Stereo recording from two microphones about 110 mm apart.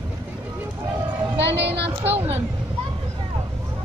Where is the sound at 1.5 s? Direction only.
15° right (ahead or behind).